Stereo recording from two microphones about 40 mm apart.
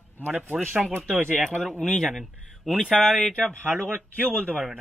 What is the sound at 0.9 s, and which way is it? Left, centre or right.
Speech, right.